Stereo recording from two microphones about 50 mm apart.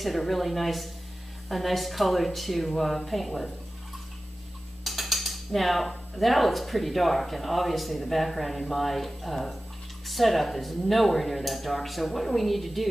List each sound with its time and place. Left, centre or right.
0.0 s speech: centre
4.8 s speech: centre